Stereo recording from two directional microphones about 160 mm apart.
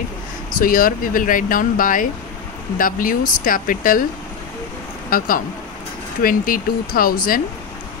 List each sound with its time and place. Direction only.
0.6 s speech: 60° left (ahead or behind)
5.1 s speech: 55° left (ahead or behind)